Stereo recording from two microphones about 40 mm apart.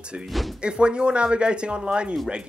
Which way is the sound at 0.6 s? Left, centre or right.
Right.